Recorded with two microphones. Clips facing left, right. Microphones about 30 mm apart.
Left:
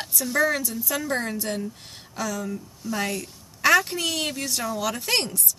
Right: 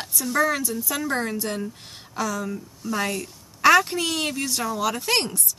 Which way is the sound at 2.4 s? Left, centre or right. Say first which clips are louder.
Right 1 dB; centre.